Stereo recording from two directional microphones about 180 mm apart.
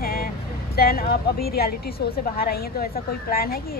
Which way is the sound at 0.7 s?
60° left (ahead or behind).